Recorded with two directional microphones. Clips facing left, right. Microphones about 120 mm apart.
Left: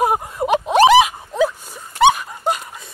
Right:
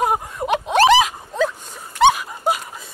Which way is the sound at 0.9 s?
5° left (ahead or behind).